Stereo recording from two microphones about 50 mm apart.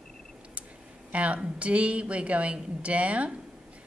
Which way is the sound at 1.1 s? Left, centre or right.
Right.